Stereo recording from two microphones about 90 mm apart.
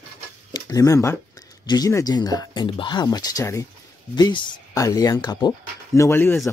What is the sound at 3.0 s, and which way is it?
Speech, 45° left (ahead or behind).